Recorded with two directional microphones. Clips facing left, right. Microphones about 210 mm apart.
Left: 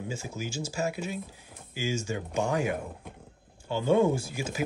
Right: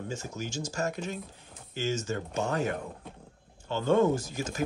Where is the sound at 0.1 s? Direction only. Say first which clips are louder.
Even; 10° left (ahead or behind).